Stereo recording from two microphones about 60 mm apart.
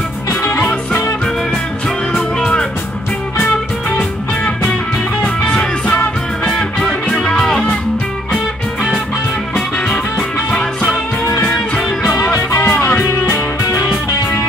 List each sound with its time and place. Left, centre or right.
0.4 s music: left
2.1 s music: centre
5.2 s music: centre
9.8 s music: centre
12.2 s music: left
12.7 s music: left